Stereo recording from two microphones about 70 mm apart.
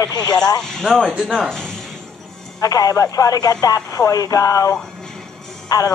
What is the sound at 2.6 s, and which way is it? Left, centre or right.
Speech, left.